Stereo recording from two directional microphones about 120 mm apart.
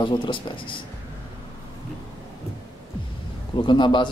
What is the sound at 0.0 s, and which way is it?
Speech, 40° left (ahead or behind).